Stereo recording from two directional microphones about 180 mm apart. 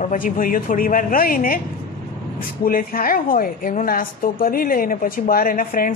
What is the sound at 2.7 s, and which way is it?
A woman's voice, 55° left (ahead or behind).